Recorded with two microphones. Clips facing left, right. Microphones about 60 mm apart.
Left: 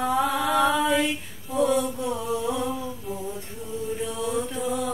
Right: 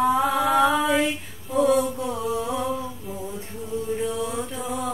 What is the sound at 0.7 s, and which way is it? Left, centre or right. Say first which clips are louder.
Female singing: right 1 dB; centre.